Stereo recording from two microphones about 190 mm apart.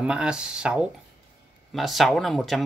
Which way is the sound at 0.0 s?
5° right (ahead or behind).